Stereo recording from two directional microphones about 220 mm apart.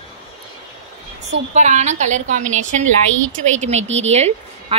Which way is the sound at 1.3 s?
30° right (ahead or behind).